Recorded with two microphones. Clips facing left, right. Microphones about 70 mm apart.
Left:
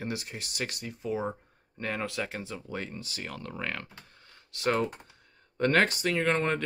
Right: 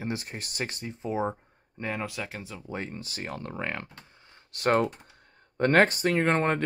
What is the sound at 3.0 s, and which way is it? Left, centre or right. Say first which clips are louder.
Speech: right 3 dB; right.